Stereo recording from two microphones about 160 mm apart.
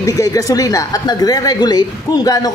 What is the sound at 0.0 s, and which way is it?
Speech, 20° left (ahead or behind).